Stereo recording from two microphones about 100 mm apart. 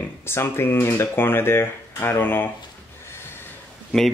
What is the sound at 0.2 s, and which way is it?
Speech, 25° left (ahead or behind).